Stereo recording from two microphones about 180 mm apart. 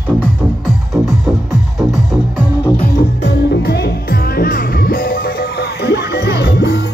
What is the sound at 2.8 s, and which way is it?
Music, 60° left (ahead or behind).